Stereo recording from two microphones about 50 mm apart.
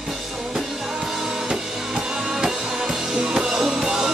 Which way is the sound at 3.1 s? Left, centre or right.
Centre.